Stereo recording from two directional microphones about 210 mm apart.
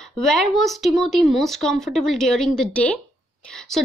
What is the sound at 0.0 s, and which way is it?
Speech, centre (ahead or behind).